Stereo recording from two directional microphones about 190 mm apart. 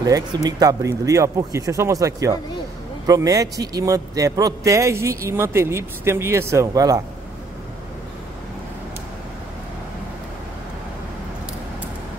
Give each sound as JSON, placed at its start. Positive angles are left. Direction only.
{"t": 0.0, "sound": "speech", "side_deg": -20}